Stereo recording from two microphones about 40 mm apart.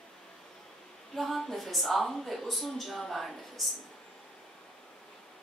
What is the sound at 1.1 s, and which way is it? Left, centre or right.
A woman's voice, centre.